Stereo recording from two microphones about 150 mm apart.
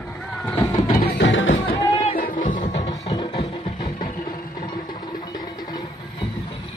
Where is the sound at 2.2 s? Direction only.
70° left (ahead or behind).